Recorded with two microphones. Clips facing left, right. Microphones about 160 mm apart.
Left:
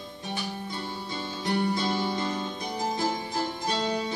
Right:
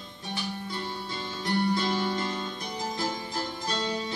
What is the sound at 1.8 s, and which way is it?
Music, 15° left (ahead or behind).